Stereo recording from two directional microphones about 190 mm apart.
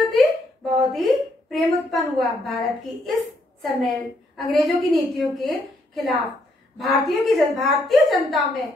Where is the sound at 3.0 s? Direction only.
Centre (ahead or behind).